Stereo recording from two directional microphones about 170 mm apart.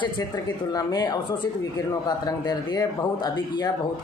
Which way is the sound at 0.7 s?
20° left (ahead or behind).